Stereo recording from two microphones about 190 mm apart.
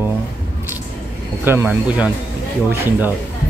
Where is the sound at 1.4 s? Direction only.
10° right (ahead or behind).